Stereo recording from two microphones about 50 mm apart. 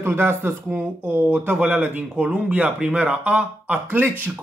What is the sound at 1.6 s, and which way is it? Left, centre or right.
Speech, right.